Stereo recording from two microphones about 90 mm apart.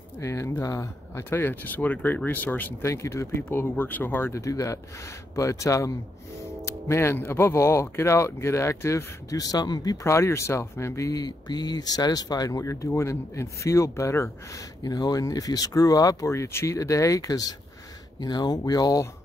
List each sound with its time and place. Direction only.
0.2 s speech: 35° left (ahead or behind)
2.8 s speech: 35° left (ahead or behind)
10.1 s speech: 30° left (ahead or behind)
14.8 s speech: 45° left (ahead or behind)